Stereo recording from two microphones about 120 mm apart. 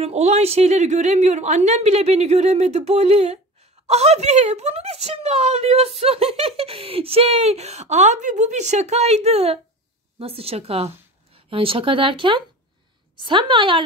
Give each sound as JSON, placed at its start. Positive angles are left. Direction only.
{"t": 0.0, "sound": "speech", "side_deg": -65}